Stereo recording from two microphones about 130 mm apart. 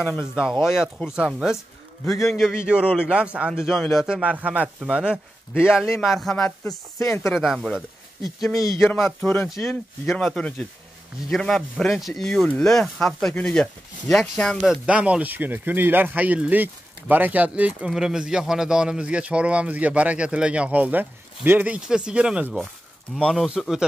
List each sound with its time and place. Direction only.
0.7 s speech: 5° right (ahead or behind)
6.7 s speech: 25° left (ahead or behind)
7.2 s speech: centre (ahead or behind)
8.5 s speech: 25° left (ahead or behind)
8.9 s speech: centre (ahead or behind)
14.9 s speech: 10° right (ahead or behind)